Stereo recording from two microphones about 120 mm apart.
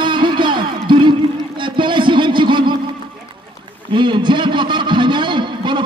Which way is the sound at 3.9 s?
40° right (ahead or behind).